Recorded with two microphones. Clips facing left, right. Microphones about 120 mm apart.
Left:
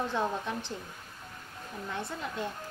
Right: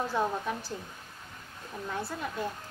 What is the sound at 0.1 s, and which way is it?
Speech, 5° right (ahead or behind).